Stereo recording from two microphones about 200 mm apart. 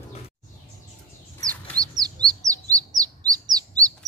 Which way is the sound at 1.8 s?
20° right (ahead or behind).